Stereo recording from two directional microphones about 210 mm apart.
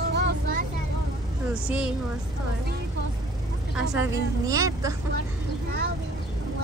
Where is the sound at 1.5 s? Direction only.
5° right (ahead or behind).